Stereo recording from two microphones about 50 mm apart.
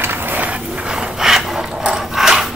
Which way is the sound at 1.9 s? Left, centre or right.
Centre.